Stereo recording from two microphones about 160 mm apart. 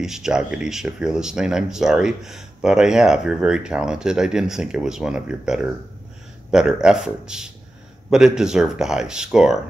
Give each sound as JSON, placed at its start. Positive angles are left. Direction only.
{"t": 0.0, "sound": "speech", "side_deg": -5}